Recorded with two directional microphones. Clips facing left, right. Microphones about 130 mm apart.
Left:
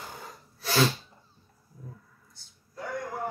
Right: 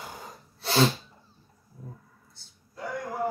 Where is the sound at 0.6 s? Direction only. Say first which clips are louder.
Right 2 dB; 30° right (ahead or behind).